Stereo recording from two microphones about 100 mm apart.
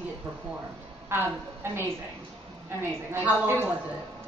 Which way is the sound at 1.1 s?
25° right (ahead or behind).